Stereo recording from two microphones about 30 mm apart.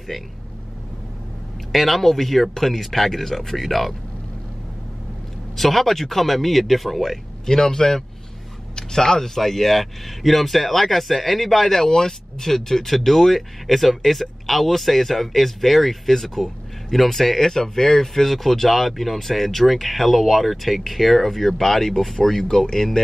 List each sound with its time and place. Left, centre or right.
1.7 s speech: centre
5.6 s speech: centre
7.4 s a man's voice: centre
9.4 s speech: centre
11.9 s speech: centre